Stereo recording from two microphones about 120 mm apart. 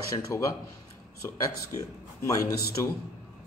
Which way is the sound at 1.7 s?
25° left (ahead or behind).